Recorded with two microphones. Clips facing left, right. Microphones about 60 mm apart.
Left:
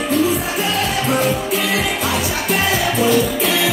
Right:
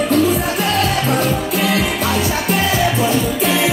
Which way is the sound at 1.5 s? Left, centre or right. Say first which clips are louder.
Right 2 dB; right.